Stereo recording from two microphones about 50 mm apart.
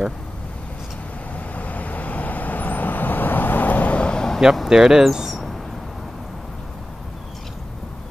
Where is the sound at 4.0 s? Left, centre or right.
Centre.